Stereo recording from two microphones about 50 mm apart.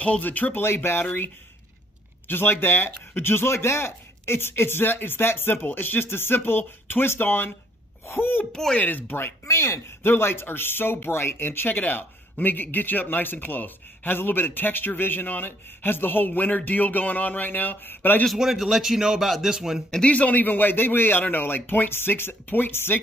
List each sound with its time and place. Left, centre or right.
0.0 s a man's voice: left
8.0 s speech: left
8.7 s a man's voice: left
9.5 s speech: left
9.8 s a man's voice: left
18.4 s speech: centre
20.1 s speech: left